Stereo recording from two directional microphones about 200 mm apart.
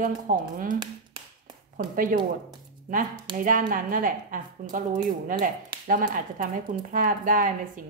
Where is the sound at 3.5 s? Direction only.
40° right (ahead or behind).